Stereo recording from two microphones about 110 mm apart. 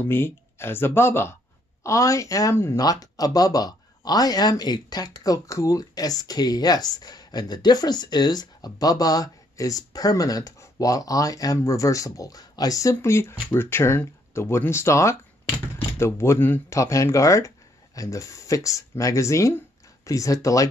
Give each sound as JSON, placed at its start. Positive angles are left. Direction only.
{"t": 0.1, "sound": "speech", "side_deg": 20}
{"t": 2.8, "sound": "speech", "side_deg": 35}